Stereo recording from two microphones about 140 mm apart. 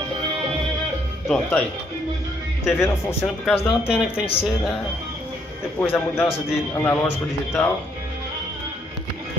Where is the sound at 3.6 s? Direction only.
5° right (ahead or behind).